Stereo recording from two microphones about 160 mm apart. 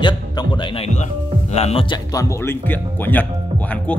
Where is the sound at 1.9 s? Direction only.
20° left (ahead or behind).